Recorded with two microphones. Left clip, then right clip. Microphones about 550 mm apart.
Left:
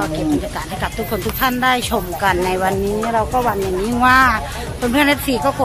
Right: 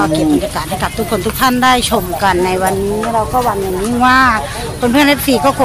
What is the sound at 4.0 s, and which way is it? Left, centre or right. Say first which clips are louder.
Speech: right 3 dB; left.